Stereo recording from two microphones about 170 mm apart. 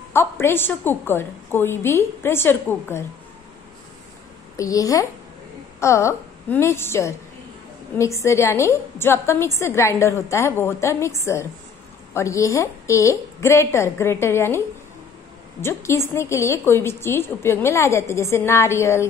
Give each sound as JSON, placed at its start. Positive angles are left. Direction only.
{"t": 0.1, "sound": "a woman's voice", "side_deg": 15}
{"t": 4.6, "sound": "a woman's voice", "side_deg": 20}
{"t": 15.6, "sound": "a woman's voice", "side_deg": 15}